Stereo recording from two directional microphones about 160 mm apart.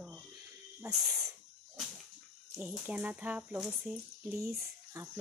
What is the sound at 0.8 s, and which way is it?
Speech, centre (ahead or behind).